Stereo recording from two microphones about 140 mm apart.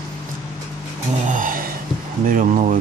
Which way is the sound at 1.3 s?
75° right (ahead or behind).